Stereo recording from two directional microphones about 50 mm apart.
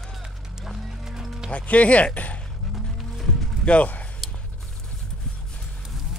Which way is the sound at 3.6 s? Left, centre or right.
Left.